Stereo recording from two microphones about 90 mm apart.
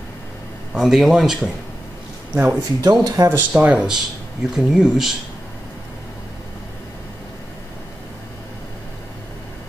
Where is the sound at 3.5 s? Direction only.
15° right (ahead or behind).